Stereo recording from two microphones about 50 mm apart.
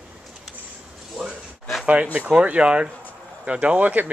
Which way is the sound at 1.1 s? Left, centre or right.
Centre.